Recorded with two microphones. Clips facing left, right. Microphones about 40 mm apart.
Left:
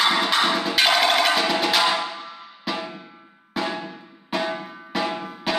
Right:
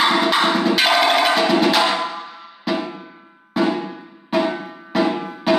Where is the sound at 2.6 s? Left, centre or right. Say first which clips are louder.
Right 6 dB; centre.